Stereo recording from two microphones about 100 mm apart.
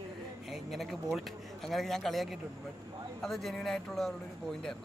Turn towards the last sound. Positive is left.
turn(degrees=5)  # may be behind; listen again after turning